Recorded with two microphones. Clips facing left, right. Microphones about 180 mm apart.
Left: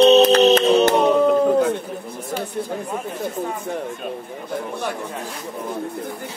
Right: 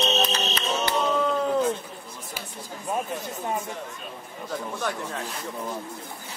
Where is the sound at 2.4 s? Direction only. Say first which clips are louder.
Left 14 dB; 60° left (ahead or behind).